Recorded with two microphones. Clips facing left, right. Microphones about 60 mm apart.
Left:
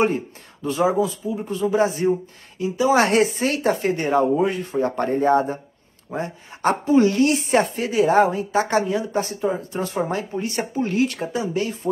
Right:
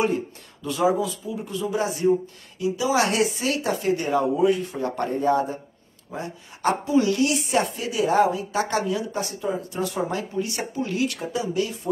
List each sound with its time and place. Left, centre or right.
0.0 s speech: left